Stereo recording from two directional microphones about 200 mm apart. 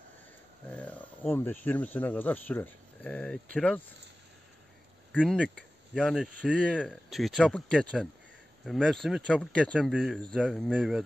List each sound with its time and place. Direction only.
0.7 s speech: 5° left (ahead or behind)
5.2 s speech: centre (ahead or behind)